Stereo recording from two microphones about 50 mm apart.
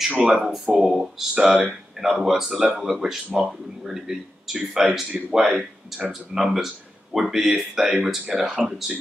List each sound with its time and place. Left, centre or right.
0.1 s speech: right
0.7 s speech: centre